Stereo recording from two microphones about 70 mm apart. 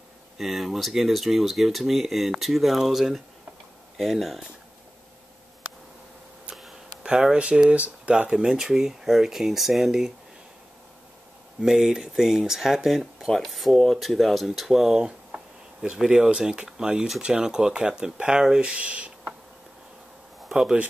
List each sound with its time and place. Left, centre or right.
0.4 s speech: centre
7.0 s speech: centre
11.6 s speech: centre
20.4 s a sound: centre